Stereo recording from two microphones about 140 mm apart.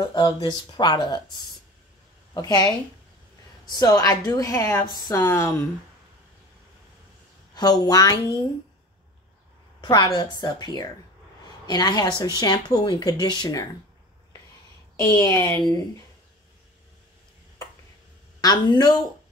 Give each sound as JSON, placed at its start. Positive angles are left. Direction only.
{"t": 0.0, "sound": "speech", "side_deg": 30}
{"t": 7.5, "sound": "speech", "side_deg": 30}
{"t": 9.8, "sound": "speech", "side_deg": 30}
{"t": 15.1, "sound": "speech", "side_deg": 25}
{"t": 15.4, "sound": "speech", "side_deg": 10}
{"t": 18.4, "sound": "speech", "side_deg": 30}